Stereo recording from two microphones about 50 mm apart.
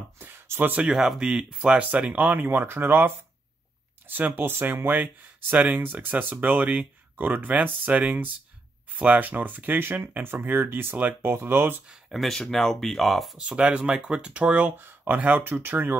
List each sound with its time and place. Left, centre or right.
0.2 s a sound: right
0.8 s speech: centre
1.6 s speech: right
4.4 s speech: right
9.2 s speech: right
9.8 s speech: right
11.2 s speech: right
12.3 s speech: centre
13.4 s speech: right
14.3 s speech: right